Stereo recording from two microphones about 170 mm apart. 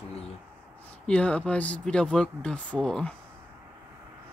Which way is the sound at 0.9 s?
5° left (ahead or behind).